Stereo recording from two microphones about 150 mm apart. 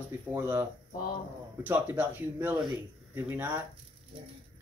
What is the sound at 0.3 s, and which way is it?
Speech, 15° right (ahead or behind).